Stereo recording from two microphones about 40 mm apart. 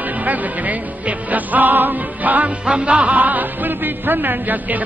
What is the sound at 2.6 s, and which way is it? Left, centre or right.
Music, right.